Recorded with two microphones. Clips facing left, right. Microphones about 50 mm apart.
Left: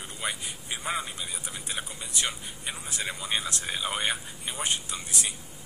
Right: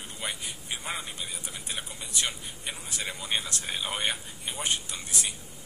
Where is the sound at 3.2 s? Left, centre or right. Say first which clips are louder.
Right 1 dB; centre.